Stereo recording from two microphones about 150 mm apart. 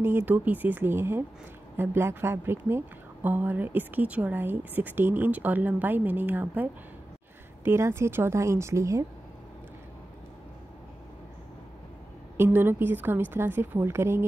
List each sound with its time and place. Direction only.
0.0 s a woman's voice: 15° right (ahead or behind)
12.4 s a woman's voice: 15° right (ahead or behind)